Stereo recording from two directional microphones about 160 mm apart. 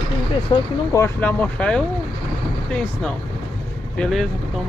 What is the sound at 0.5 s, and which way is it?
Speech, 30° left (ahead or behind).